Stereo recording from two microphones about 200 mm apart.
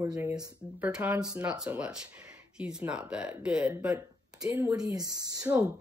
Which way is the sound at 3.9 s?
15° right (ahead or behind).